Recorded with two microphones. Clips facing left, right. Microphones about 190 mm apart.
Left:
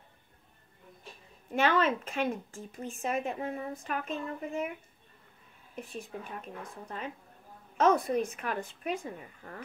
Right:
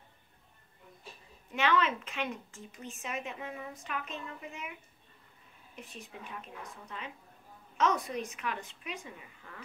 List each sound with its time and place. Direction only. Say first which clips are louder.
1.5 s speech: left 3 dB; 45° left (ahead or behind)
5.8 s speech: left 7 dB; 45° left (ahead or behind)